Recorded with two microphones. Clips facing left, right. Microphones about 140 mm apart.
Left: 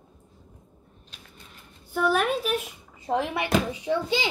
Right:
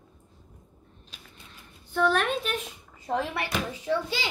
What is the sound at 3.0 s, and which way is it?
A child's voice, 20° left (ahead or behind).